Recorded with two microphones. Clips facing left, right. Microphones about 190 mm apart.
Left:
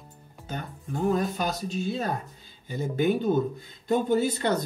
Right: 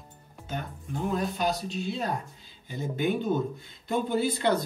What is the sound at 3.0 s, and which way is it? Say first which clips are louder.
Speech: left 3 dB; 40° left (ahead or behind).